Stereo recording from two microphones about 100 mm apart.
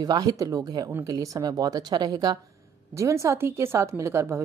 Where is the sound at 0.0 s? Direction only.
45° right (ahead or behind).